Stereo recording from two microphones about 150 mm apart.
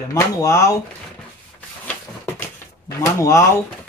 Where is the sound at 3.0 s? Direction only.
20° left (ahead or behind).